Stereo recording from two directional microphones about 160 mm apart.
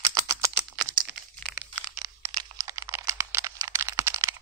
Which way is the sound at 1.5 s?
10° right (ahead or behind).